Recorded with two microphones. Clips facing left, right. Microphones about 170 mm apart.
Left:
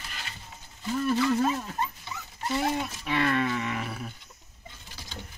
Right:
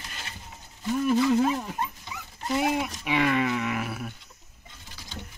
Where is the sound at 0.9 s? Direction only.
15° right (ahead or behind).